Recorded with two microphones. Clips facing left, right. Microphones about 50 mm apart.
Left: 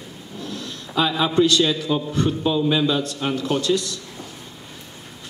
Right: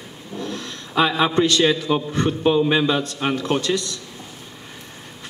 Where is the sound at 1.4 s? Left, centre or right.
Right.